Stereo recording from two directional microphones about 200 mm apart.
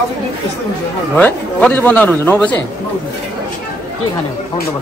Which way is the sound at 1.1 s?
5° left (ahead or behind).